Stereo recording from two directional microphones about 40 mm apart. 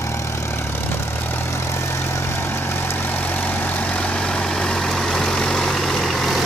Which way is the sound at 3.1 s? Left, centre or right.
Left.